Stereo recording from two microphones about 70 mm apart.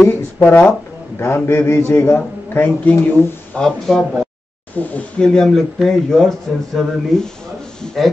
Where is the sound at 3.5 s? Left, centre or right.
Centre.